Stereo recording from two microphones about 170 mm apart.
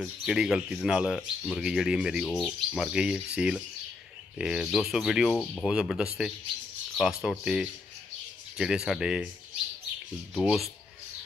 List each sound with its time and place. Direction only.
0.0 s speech: 5° right (ahead or behind)
10.4 s speech: centre (ahead or behind)